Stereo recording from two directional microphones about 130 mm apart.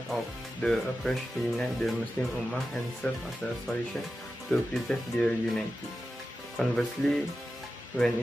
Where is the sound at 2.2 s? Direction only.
15° left (ahead or behind).